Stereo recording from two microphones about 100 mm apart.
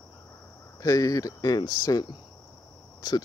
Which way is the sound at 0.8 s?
35° left (ahead or behind).